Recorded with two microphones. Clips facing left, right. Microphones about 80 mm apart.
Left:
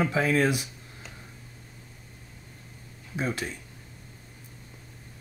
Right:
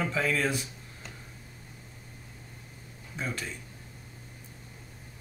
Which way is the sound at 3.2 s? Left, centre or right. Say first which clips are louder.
Left 5 dB; centre.